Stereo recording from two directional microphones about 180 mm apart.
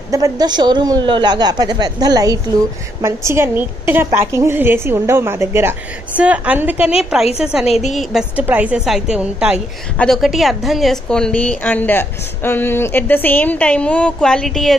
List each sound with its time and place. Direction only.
0.1 s a woman's voice: 20° right (ahead or behind); by 7.6 s 5° right (ahead or behind)
7.6 s a woman's voice: 35° left (ahead or behind)
7.9 s a woman's voice: centre (ahead or behind)